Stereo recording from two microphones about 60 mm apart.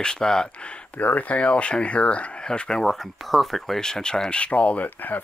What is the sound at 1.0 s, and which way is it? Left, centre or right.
Speech, left.